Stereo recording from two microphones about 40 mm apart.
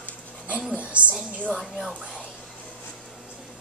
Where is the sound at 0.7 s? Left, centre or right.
Right.